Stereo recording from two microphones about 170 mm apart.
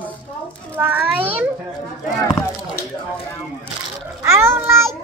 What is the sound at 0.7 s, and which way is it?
Speech, 10° right (ahead or behind).